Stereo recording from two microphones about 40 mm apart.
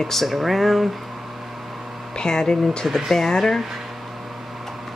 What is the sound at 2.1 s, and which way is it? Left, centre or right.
Speech, centre.